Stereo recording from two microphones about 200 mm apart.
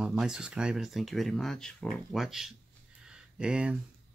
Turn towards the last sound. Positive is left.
turn(degrees=-5)  # may be behind; listen again after turning